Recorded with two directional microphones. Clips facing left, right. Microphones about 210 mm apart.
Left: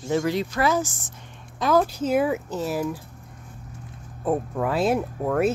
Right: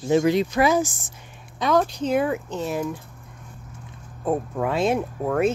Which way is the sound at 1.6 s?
5° left (ahead or behind).